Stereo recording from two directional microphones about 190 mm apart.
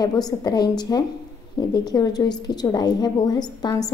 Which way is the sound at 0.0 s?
20° left (ahead or behind).